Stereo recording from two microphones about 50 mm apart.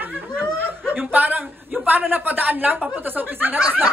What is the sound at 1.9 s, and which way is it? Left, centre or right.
Speech, right.